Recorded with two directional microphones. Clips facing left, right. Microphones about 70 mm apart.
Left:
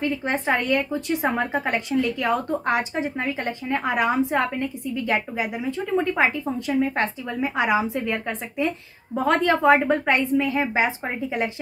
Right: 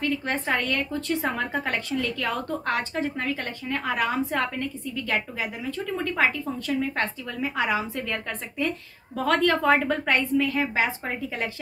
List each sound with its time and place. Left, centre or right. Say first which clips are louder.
0.0 s a woman's voice: left 3 dB; centre